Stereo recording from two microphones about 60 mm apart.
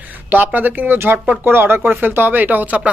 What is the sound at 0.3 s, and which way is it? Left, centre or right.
Speech, right.